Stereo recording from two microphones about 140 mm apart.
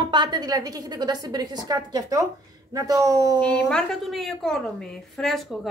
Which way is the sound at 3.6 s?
5° left (ahead or behind).